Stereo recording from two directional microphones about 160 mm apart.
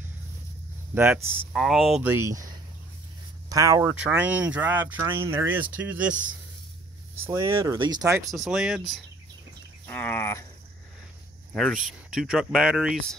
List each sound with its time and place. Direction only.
0.9 s speech: 10° right (ahead or behind)
1.5 s speech: centre (ahead or behind)
2.0 s speech: 15° right (ahead or behind)
4.0 s speech: 10° right (ahead or behind)
7.2 s speech: 15° right (ahead or behind)
8.3 s speech: centre (ahead or behind)
9.8 s cricket: 10° left (ahead or behind)
11.5 s speech: centre (ahead or behind)